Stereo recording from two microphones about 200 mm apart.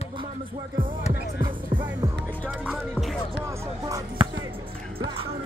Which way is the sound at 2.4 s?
Centre (ahead or behind).